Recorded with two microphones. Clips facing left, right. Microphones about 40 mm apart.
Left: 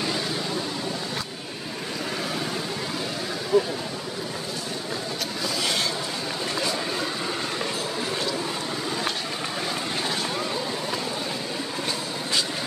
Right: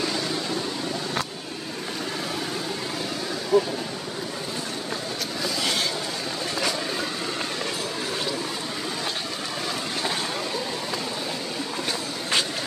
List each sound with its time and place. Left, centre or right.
3.5 s speech: centre